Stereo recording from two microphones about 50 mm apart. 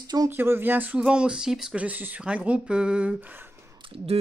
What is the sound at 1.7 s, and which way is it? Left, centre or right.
Speech, right.